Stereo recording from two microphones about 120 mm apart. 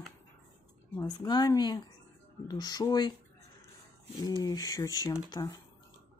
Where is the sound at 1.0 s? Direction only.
35° left (ahead or behind).